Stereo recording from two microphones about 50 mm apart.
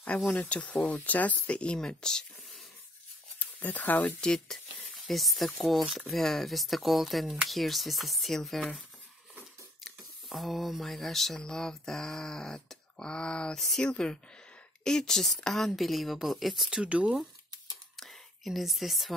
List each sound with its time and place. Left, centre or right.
0.4 s speech: left
3.3 s speech: left
4.5 s a woman's voice: centre
9.8 s a woman's voice: centre
16.7 s speech: right
17.9 s whispering: centre